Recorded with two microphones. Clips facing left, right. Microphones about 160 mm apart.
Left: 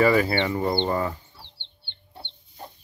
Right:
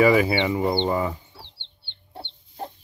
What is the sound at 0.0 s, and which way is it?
Speech, 10° right (ahead or behind).